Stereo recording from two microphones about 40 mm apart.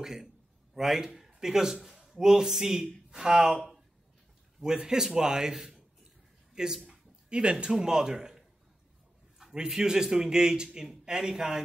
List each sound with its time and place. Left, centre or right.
0.0 s a man's voice: centre
4.8 s a man's voice: centre
6.9 s a sound: right
7.7 s a man's voice: centre